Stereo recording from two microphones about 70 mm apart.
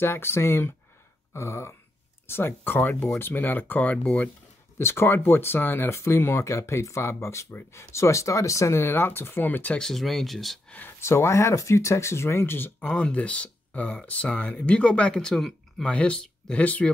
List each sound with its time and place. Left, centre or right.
0.0 s speech: left
4.7 s speech: left
9.8 s speech: centre
10.7 s a sound: left
11.0 s speech: left
12.8 s speech: centre